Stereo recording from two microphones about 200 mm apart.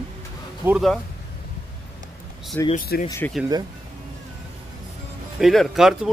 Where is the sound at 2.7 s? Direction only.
50° left (ahead or behind).